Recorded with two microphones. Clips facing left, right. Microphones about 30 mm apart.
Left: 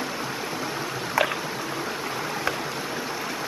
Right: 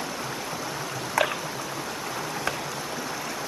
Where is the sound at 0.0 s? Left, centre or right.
Centre.